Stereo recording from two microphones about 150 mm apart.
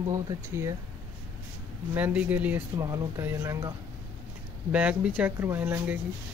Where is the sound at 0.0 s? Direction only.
20° right (ahead or behind).